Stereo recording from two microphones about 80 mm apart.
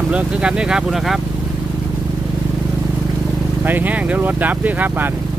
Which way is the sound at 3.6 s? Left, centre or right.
Right.